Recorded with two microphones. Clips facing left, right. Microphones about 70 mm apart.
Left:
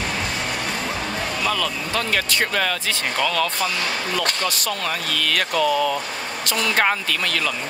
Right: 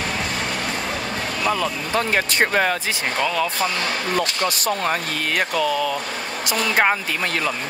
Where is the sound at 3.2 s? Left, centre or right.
Centre.